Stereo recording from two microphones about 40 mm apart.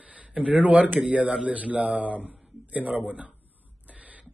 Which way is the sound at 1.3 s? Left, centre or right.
Right.